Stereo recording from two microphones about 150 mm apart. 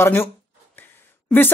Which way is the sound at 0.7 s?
15° left (ahead or behind).